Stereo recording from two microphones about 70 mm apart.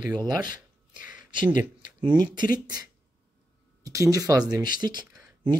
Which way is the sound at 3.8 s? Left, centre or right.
Right.